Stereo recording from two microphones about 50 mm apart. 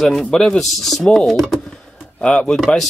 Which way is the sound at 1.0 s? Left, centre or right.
Centre.